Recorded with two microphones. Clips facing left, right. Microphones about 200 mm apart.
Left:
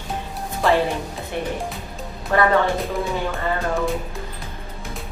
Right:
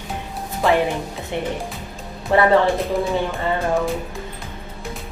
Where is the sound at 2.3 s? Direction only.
25° right (ahead or behind).